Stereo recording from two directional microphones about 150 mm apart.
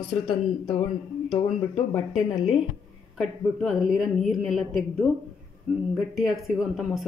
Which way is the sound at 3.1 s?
Centre (ahead or behind).